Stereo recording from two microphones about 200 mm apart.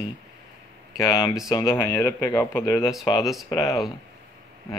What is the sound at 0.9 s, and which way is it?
Speech, 15° left (ahead or behind).